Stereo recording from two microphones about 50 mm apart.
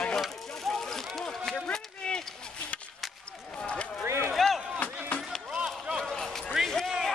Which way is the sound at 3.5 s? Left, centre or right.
Centre.